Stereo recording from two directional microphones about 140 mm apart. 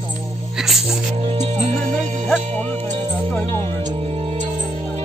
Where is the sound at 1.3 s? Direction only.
55° right (ahead or behind).